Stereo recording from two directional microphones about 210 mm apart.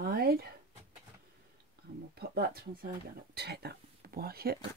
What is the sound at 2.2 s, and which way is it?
Speech, 50° right (ahead or behind).